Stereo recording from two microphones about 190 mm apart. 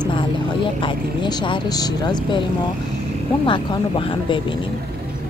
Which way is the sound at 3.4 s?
25° left (ahead or behind).